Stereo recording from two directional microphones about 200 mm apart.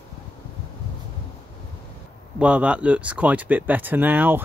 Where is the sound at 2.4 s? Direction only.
5° right (ahead or behind).